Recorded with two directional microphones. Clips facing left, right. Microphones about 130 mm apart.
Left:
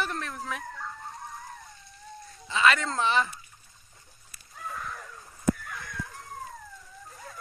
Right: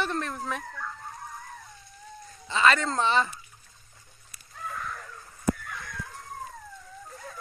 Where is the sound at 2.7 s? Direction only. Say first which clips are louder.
Right 3 dB; centre (ahead or behind).